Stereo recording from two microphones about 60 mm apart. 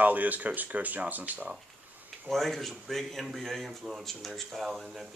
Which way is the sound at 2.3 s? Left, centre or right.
Centre.